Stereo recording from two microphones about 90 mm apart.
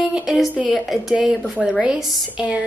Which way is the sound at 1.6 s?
10° right (ahead or behind).